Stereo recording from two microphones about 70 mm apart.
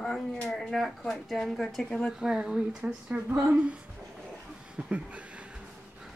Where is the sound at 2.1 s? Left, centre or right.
Centre.